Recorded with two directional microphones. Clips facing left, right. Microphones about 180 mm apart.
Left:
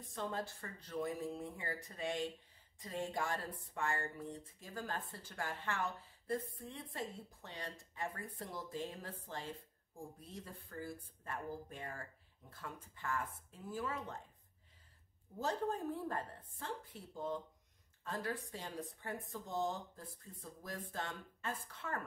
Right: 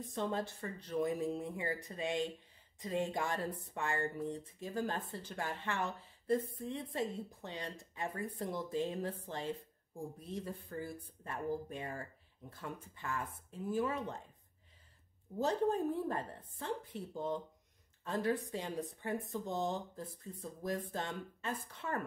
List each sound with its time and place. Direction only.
0.1 s speech: 20° right (ahead or behind)
15.3 s speech: 20° right (ahead or behind)